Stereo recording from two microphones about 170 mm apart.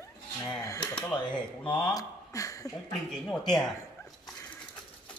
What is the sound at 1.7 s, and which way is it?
Speech, 20° left (ahead or behind).